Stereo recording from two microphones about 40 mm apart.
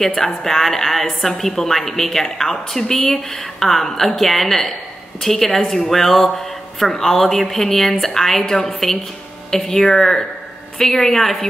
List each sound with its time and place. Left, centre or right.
0.0 s a man's voice: centre